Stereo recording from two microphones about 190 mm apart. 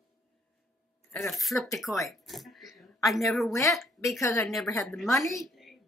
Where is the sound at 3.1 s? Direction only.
Centre (ahead or behind).